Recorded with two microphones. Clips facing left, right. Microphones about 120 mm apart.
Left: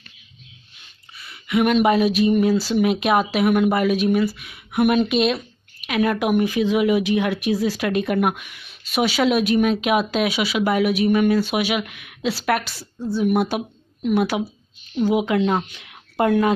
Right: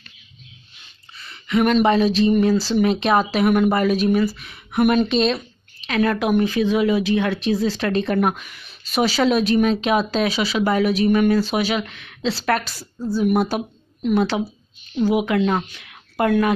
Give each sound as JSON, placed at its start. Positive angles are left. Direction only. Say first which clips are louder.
{"t": 1.1, "sound": "a woman's voice", "louder": "right 1 dB", "side_deg": 10}